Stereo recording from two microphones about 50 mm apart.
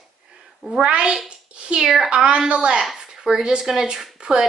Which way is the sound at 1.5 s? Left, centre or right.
Right.